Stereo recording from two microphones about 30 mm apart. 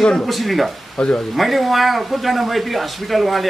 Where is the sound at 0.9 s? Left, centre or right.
Left.